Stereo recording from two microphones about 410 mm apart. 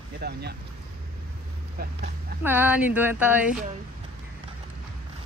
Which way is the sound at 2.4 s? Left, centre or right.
Centre.